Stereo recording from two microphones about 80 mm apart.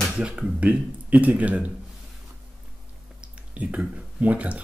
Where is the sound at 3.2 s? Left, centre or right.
Centre.